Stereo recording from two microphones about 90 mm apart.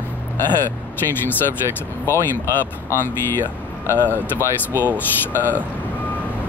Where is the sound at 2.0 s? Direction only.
30° left (ahead or behind).